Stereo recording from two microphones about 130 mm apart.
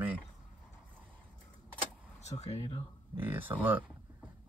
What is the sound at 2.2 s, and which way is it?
Speech, 55° left (ahead or behind).